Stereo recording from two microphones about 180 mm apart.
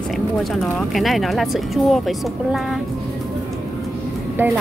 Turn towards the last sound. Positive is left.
turn(degrees=-10)  # may be behind; listen again after turning